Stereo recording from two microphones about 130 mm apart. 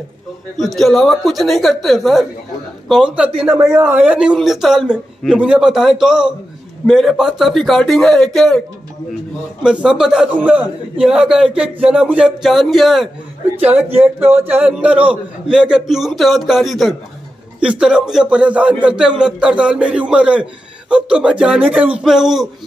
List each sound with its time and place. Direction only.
0.6 s a man's voice: centre (ahead or behind)
3.5 s a man's voice: 20° right (ahead or behind); by 13.1 s centre (ahead or behind)
13.6 s a man's voice: 10° right (ahead or behind)